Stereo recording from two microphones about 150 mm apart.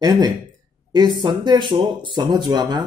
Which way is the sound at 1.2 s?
30° right (ahead or behind).